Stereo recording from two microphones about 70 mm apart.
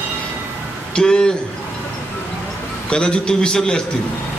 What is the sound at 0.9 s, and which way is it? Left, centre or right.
Speech, centre.